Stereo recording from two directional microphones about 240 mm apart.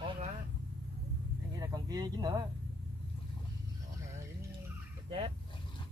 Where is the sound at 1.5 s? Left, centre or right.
Centre.